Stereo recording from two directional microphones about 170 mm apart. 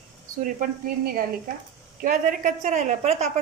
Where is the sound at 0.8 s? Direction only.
55° right (ahead or behind).